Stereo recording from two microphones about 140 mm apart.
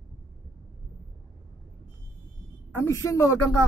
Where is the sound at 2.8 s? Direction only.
20° left (ahead or behind).